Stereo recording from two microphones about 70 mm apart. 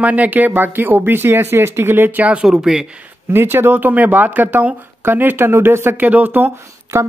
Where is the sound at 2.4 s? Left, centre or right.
Centre.